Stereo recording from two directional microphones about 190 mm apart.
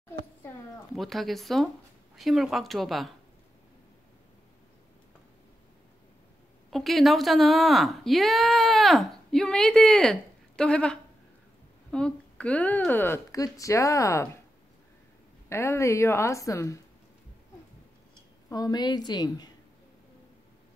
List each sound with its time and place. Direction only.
0.9 s a woman's voice: centre (ahead or behind)
6.7 s a woman's voice: centre (ahead or behind)
15.5 s speech: 15° left (ahead or behind)
18.5 s a woman's voice: 20° left (ahead or behind)